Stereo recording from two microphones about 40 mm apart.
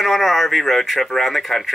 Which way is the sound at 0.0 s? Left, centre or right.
Centre.